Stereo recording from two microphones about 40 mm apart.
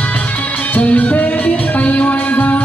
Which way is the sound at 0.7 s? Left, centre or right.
Left.